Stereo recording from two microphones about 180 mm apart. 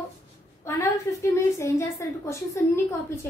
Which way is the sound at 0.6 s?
15° left (ahead or behind).